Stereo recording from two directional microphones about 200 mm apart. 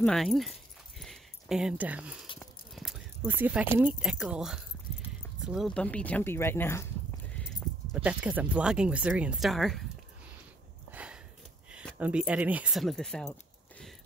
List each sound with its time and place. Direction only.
0.0 s dog: centre (ahead or behind)
2.7 s speech: centre (ahead or behind)
7.9 s speech: 5° right (ahead or behind)
10.9 s a sound: 5° right (ahead or behind)
11.7 s speech: 5° right (ahead or behind)